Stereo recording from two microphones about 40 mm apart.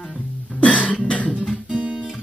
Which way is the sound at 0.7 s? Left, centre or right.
Left.